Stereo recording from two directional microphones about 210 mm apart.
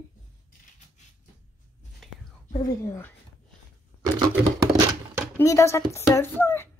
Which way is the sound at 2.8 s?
10° left (ahead or behind).